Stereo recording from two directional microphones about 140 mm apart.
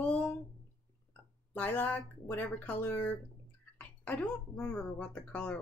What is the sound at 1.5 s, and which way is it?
Speech, 10° left (ahead or behind).